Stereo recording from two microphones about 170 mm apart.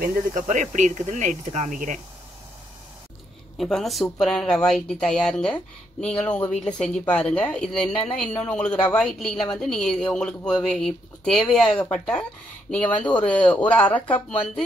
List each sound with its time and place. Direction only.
0.0 s speech: 50° right (ahead or behind)
3.5 s a woman's voice: centre (ahead or behind)